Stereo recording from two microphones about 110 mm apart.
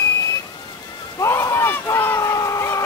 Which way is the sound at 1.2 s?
25° left (ahead or behind).